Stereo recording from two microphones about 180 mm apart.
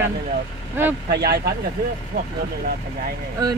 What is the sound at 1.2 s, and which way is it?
Speech, 60° right (ahead or behind).